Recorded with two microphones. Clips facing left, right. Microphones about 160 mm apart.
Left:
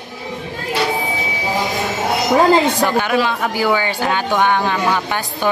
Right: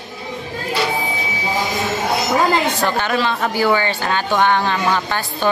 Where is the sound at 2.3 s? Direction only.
15° left (ahead or behind).